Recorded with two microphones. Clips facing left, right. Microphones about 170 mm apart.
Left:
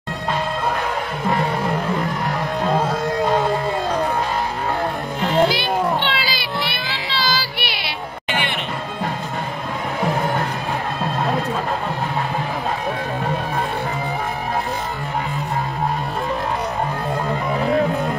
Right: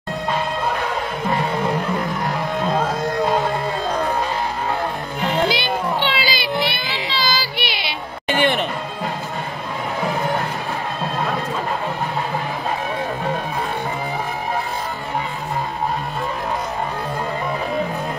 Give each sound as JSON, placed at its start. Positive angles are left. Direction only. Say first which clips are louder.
{"t": 5.5, "sound": "a sound", "louder": "left 2 dB", "side_deg": 0}
{"t": 6.7, "sound": "child singing", "louder": "right 1 dB", "side_deg": 0}
{"t": 8.3, "sound": "music", "louder": "right 7 dB", "side_deg": -45}